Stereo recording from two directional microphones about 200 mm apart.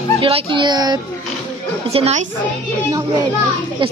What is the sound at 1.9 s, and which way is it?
Speech, 30° right (ahead or behind).